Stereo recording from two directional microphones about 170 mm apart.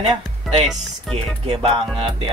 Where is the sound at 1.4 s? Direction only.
35° right (ahead or behind).